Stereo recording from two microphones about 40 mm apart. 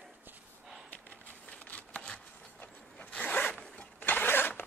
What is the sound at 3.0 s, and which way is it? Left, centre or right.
Zipper, left.